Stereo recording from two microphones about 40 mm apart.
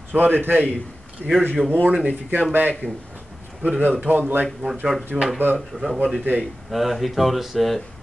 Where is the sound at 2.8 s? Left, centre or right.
Right.